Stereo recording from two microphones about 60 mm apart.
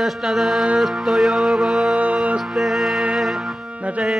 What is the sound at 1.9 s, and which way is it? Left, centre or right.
Music, right.